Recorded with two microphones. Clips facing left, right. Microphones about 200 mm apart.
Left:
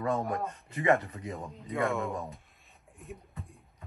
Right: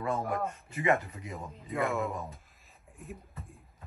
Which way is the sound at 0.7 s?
35° left (ahead or behind).